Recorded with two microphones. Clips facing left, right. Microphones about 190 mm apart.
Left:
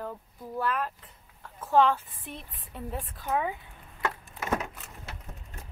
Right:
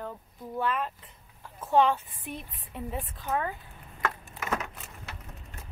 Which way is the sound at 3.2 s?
10° left (ahead or behind).